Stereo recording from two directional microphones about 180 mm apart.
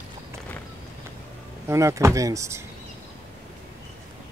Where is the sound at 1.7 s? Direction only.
15° right (ahead or behind).